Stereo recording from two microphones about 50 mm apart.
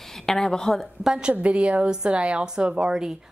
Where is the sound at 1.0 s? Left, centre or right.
Centre.